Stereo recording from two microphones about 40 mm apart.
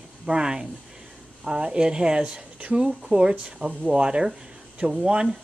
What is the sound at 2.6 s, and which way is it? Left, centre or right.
Speech, right.